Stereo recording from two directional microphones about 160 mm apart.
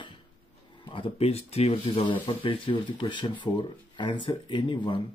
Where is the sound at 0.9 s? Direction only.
35° left (ahead or behind).